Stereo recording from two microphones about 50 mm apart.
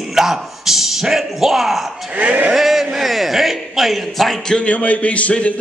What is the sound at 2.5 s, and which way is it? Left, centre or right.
Speech, centre.